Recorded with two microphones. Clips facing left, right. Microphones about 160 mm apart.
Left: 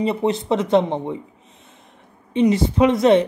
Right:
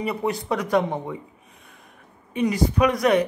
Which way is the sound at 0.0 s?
25° left (ahead or behind).